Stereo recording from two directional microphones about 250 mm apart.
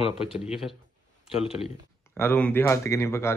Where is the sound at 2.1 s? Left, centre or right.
Centre.